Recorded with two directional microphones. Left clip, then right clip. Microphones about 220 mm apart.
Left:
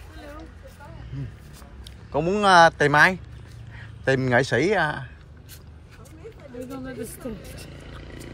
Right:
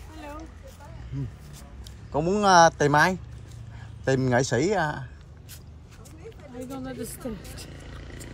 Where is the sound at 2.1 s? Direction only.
20° right (ahead or behind).